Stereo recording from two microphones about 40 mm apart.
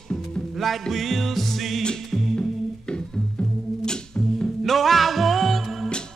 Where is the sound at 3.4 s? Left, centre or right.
Centre.